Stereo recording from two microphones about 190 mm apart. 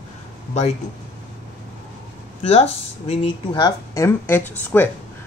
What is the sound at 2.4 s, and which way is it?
Speech, 30° left (ahead or behind).